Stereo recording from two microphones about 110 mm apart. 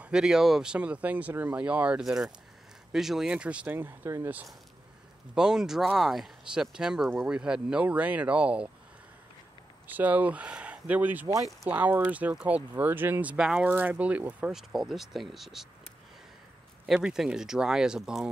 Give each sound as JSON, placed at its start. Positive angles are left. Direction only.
{"t": 0.0, "sound": "speech", "side_deg": -5}
{"t": 5.3, "sound": "speech", "side_deg": -5}
{"t": 9.8, "sound": "speech", "side_deg": -15}
{"t": 16.8, "sound": "speech", "side_deg": -5}